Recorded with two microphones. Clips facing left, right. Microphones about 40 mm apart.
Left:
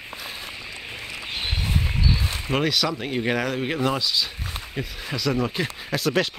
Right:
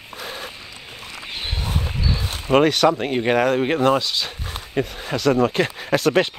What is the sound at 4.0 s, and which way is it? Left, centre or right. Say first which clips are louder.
Speech: even; right.